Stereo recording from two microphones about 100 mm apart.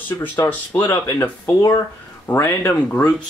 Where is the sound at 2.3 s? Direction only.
15° left (ahead or behind).